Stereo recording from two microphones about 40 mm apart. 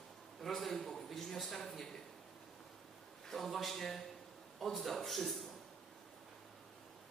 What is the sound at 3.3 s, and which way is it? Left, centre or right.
Speech, centre.